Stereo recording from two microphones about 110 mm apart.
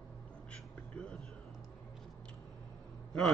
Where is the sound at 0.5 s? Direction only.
10° left (ahead or behind).